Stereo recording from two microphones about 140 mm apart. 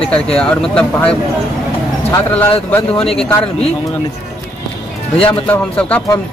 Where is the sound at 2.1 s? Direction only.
15° left (ahead or behind).